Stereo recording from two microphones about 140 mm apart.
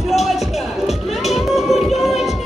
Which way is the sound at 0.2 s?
Centre (ahead or behind).